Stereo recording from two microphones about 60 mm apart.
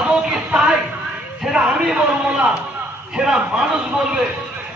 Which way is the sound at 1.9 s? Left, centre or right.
Centre.